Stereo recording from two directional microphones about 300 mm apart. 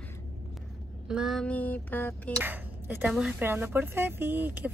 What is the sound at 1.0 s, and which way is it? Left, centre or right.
A woman's voice, centre.